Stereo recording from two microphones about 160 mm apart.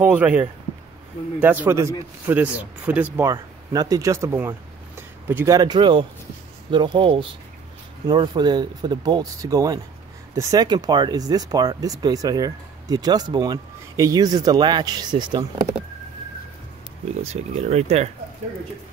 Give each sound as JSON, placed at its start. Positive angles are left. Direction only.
{"t": 0.0, "sound": "speech", "side_deg": -10}
{"t": 3.3, "sound": "speech", "side_deg": -25}
{"t": 17.2, "sound": "speech", "side_deg": -40}